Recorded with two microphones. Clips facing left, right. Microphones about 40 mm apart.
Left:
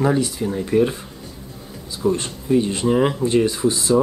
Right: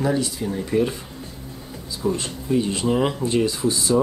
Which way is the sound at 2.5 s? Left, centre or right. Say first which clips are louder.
Left 3 dB; centre.